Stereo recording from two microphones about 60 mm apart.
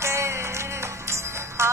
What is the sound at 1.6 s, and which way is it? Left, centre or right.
Music, right.